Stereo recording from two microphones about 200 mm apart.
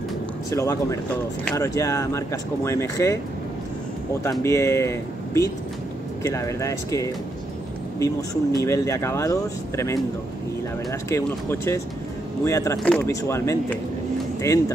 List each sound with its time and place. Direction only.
0.5 s speech: 15° left (ahead or behind)
4.2 s speech: 15° left (ahead or behind)